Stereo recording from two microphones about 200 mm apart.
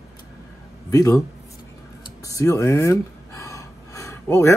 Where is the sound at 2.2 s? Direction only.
15° left (ahead or behind).